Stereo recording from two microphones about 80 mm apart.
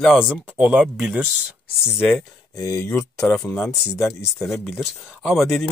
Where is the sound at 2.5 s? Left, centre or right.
Left.